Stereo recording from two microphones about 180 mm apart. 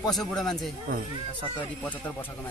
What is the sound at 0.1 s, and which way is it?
Speech, centre (ahead or behind).